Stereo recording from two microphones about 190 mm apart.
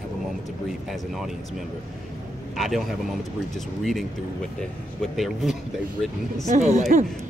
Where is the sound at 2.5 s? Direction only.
Centre (ahead or behind).